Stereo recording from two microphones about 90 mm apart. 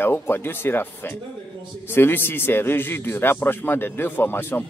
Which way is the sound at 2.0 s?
25° left (ahead or behind).